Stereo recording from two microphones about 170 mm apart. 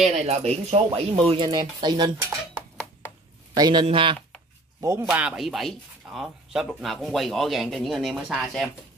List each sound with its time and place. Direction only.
0.0 s speech: 40° right (ahead or behind)
3.5 s speech: 25° right (ahead or behind)
4.8 s speech: 15° right (ahead or behind)